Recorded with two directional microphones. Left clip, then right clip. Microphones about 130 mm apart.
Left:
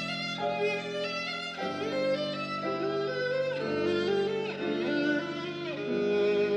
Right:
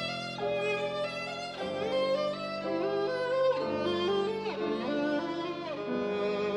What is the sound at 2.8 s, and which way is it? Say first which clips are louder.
Music: right 2 dB; 55° right (ahead or behind).